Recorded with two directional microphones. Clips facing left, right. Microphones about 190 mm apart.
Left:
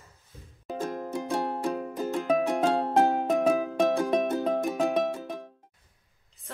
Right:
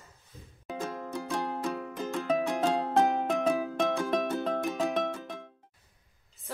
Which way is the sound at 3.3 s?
5° left (ahead or behind).